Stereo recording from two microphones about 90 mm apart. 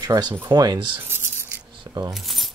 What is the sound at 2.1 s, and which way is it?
Keys jangling, centre (ahead or behind).